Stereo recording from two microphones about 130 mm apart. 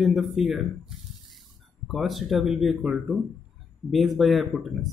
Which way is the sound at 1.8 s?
Centre (ahead or behind).